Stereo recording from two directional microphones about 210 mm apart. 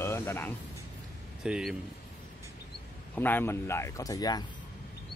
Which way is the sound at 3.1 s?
10° left (ahead or behind).